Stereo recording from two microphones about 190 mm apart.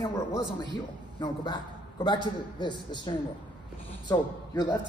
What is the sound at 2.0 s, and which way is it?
A man's voice, 25° left (ahead or behind).